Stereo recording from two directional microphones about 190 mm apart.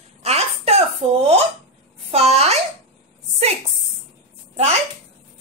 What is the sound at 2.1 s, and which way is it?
Speech, 35° right (ahead or behind).